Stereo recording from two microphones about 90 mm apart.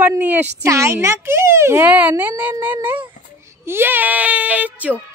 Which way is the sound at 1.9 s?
20° right (ahead or behind).